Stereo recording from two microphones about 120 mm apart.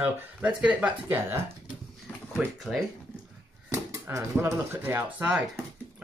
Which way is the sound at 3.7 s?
25° right (ahead or behind).